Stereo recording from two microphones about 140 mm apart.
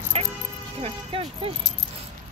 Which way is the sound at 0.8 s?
45° right (ahead or behind).